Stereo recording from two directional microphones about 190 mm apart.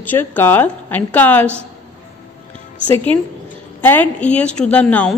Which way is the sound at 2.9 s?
10° left (ahead or behind).